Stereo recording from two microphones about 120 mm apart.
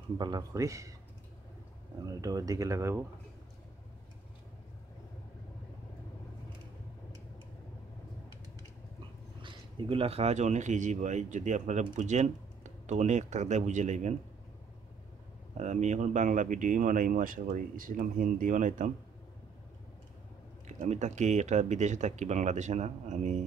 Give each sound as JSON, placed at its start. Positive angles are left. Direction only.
{"t": 0.2, "sound": "speech", "side_deg": -35}
{"t": 2.2, "sound": "speech", "side_deg": -30}
{"t": 9.4, "sound": "speech", "side_deg": -45}
{"t": 15.5, "sound": "speech", "side_deg": -80}
{"t": 20.6, "sound": "speech", "side_deg": -75}